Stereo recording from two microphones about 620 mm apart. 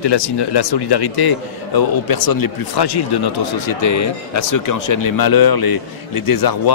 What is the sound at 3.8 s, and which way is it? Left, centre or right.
Speech, left.